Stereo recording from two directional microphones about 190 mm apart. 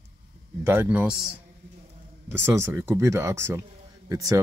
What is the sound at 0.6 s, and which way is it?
Speech, 10° right (ahead or behind).